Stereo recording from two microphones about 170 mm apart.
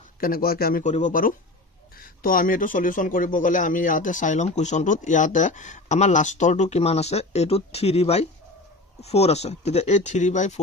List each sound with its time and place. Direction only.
0.2 s a man's voice: 60° left (ahead or behind)
0.8 s speech: 45° left (ahead or behind)